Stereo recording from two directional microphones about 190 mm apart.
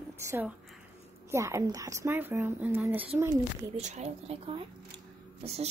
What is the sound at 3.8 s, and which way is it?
Speech, 35° right (ahead or behind).